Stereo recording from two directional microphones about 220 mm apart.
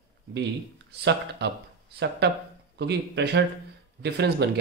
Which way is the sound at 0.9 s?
50° right (ahead or behind).